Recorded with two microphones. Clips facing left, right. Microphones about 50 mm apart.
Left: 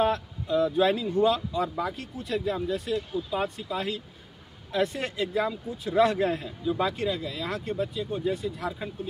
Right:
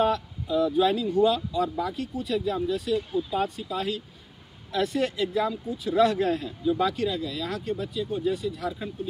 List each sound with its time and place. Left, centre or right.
0.0 s speech: left